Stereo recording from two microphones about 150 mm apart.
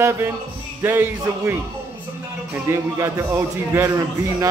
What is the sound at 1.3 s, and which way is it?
Speech, 15° right (ahead or behind).